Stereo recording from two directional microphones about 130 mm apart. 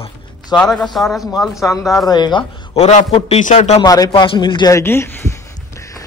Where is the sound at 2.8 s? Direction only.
60° left (ahead or behind).